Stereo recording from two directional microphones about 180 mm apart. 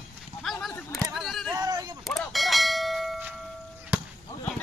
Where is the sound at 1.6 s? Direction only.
20° right (ahead or behind).